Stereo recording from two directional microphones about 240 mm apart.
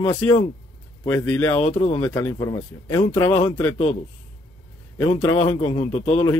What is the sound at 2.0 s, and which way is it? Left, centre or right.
A man's voice, centre.